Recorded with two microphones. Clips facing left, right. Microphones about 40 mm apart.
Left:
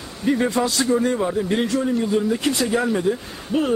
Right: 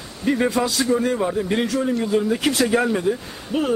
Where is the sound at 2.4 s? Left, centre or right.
Right.